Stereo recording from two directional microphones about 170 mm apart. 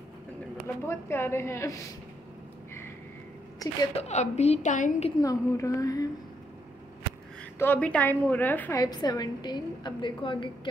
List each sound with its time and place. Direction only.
0.8 s a woman's voice: 15° left (ahead or behind)
3.5 s a woman's voice: 20° left (ahead or behind)
3.9 s a woman's voice: 40° left (ahead or behind)
5.2 s a woman's voice: 20° left (ahead or behind)
7.5 s a woman's voice: 10° left (ahead or behind)
8.8 s a woman's voice: 20° left (ahead or behind)